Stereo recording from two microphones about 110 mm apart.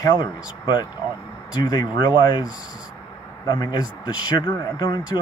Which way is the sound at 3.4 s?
35° left (ahead or behind).